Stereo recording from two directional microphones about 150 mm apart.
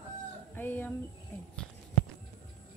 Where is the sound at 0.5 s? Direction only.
10° left (ahead or behind).